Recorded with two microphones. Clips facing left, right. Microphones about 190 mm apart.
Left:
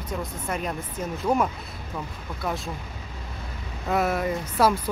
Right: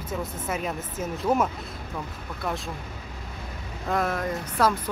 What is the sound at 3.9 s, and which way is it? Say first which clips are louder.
Speech: left 2 dB; 10° left (ahead or behind).